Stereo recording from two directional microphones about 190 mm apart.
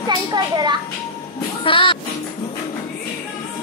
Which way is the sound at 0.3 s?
20° right (ahead or behind).